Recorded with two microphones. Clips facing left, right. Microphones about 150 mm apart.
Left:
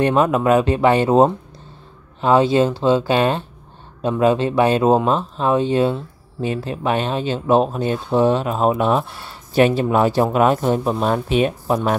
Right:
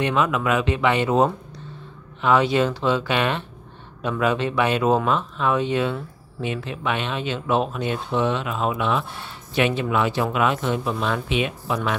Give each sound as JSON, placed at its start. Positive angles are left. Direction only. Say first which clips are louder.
{"t": 0.0, "sound": "speech", "louder": "left 6 dB", "side_deg": 40}